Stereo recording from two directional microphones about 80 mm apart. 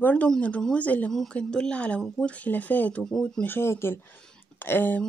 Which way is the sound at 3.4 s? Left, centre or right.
Left.